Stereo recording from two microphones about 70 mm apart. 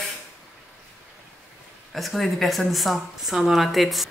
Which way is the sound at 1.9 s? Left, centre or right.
Centre.